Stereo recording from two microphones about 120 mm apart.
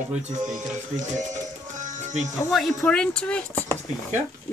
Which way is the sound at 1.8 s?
75° right (ahead or behind).